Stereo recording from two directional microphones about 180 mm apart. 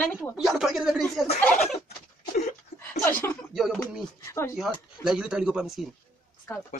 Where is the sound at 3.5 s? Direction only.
Centre (ahead or behind).